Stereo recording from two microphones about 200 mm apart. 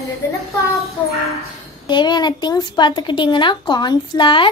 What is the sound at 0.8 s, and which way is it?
Child singing, centre (ahead or behind).